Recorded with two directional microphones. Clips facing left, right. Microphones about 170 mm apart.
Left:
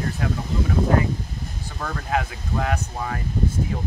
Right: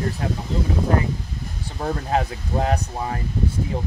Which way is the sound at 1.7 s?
30° right (ahead or behind).